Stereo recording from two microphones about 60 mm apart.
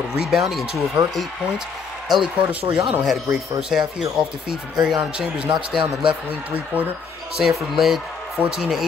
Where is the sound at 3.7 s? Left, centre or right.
Centre.